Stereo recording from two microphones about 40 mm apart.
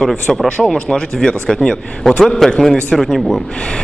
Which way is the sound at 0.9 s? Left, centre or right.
Centre.